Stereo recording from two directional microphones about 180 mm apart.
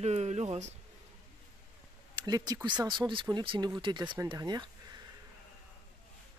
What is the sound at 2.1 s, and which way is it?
Speech, 20° right (ahead or behind).